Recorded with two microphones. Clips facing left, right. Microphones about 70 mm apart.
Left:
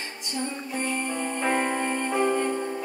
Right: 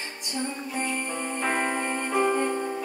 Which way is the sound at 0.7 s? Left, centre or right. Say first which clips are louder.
Left 2 dB; centre.